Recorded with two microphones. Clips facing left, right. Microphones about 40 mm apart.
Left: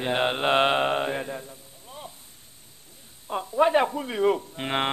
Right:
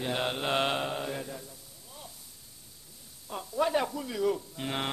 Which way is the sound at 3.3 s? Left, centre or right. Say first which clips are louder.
Left 7 dB; left.